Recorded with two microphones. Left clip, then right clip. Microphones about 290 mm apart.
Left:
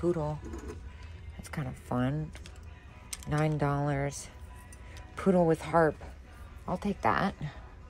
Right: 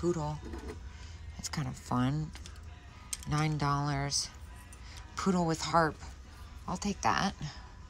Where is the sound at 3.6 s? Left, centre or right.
Centre.